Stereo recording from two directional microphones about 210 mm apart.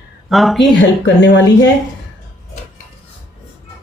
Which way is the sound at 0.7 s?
60° left (ahead or behind).